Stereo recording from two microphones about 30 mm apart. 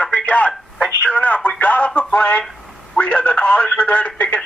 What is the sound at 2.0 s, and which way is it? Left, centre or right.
Speech, left.